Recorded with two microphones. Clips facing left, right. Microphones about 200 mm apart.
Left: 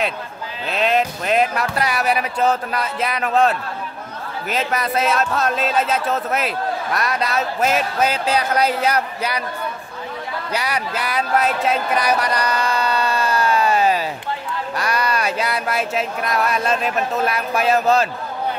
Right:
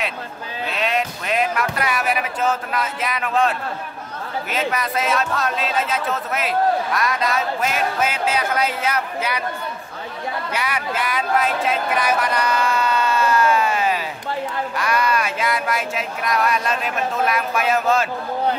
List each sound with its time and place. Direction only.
0.7 s speech: 35° left (ahead or behind)
10.5 s speech: 35° left (ahead or behind)